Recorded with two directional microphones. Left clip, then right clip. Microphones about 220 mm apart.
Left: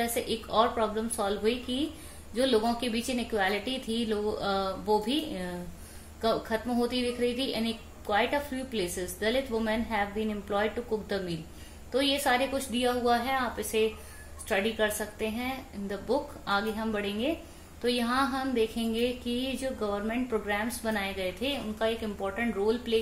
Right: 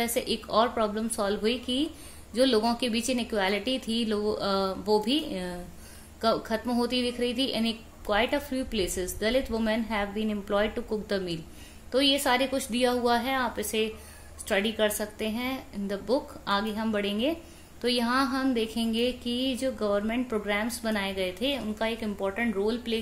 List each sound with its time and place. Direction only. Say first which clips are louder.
0.0 s speech: right 2 dB; 45° right (ahead or behind)